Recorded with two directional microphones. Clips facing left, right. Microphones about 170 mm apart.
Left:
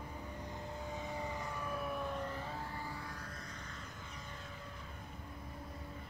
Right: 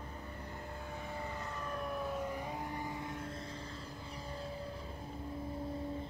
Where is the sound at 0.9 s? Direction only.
15° left (ahead or behind); by 3.4 s 25° right (ahead or behind).